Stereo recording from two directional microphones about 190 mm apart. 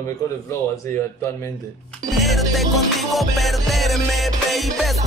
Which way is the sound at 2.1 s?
Centre (ahead or behind).